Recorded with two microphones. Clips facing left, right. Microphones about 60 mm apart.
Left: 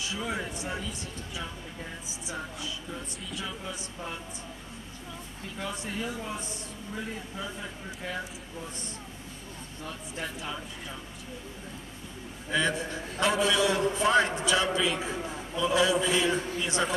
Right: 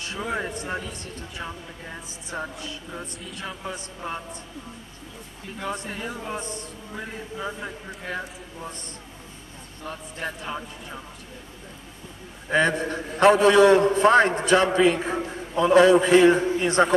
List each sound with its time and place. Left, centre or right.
0.2 s a man's voice: right
5.7 s a man's voice: right
10.2 s speech: right
12.4 s a man's voice: right